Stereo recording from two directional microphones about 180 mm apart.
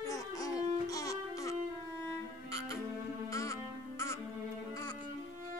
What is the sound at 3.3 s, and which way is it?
Music, 15° left (ahead or behind).